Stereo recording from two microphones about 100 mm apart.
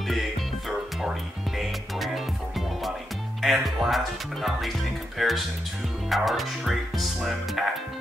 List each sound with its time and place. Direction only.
0.1 s music: centre (ahead or behind)
3.4 s speech: centre (ahead or behind)